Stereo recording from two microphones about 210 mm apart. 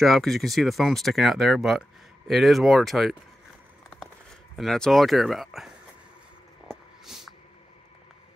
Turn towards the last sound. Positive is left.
turn(degrees=0)  # may be behind; listen again after turning